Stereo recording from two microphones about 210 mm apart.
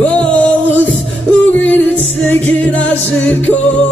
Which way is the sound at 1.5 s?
5° left (ahead or behind).